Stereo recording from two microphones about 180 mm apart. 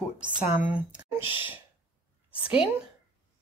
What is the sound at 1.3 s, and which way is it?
Speech, 30° left (ahead or behind).